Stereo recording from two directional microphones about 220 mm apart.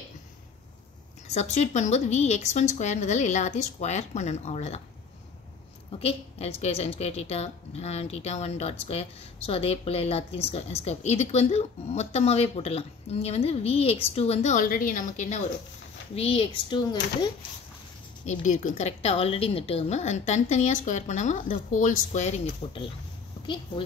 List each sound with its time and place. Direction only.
1.2 s speech: 30° left (ahead or behind)
5.9 s a woman's voice: 25° left (ahead or behind)
18.2 s speech: 35° left (ahead or behind)